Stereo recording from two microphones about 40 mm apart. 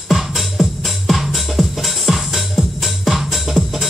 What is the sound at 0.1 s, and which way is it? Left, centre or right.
Music, centre.